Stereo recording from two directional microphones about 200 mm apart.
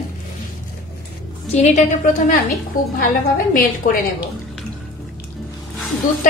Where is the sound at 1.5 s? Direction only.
35° left (ahead or behind).